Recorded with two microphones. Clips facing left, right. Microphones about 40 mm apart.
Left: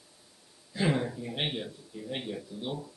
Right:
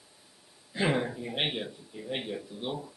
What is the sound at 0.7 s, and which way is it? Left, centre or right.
Speech, centre.